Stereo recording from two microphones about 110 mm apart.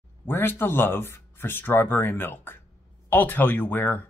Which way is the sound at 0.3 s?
20° left (ahead or behind).